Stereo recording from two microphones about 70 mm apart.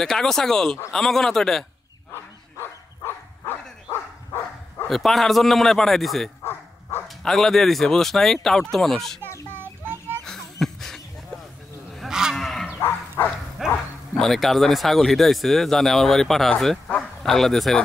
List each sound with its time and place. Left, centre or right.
0.0 s speech: centre
3.4 s dog: left
4.8 s speech: centre
9.5 s music: right
10.2 s a sound: centre
12.1 s cattle: centre
12.4 s livestock: centre
12.8 s bow-wow: left
13.6 s speech: centre